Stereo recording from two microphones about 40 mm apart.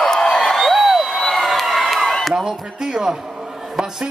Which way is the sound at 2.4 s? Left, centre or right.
Centre.